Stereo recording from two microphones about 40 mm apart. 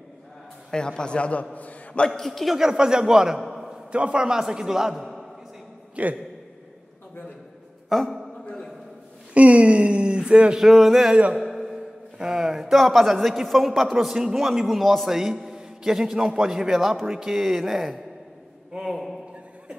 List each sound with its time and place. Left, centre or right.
0.7 s a man's voice: left
2.0 s speech: centre
2.5 s a man's voice: centre
3.3 s a sound: centre
3.9 s a man's voice: right
6.0 s a man's voice: right
7.9 s speech: centre
9.3 s a sound: right
10.6 s a man's voice: centre
11.3 s a sound: centre
11.7 s a man's voice: centre
17.4 s speech: centre